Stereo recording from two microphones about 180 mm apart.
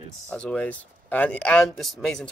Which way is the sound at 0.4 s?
5° left (ahead or behind).